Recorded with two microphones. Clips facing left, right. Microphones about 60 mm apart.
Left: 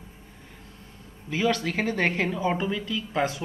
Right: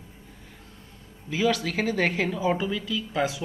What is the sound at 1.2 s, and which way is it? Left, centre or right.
Speech, centre.